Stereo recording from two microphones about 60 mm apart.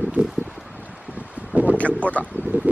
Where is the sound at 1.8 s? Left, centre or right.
Left.